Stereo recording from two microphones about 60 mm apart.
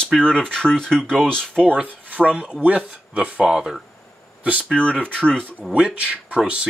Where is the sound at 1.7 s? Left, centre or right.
Right; by 3.8 s centre.